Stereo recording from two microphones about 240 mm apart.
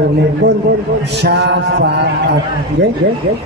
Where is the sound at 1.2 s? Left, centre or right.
Right.